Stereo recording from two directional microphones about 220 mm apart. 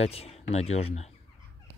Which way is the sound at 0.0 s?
25° left (ahead or behind).